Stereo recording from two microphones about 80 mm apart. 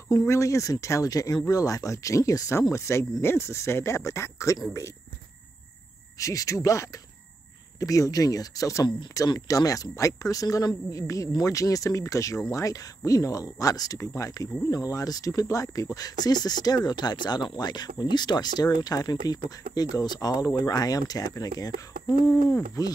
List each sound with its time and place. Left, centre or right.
0.3 s speech: left
6.1 s speech: left
22.2 s speech: left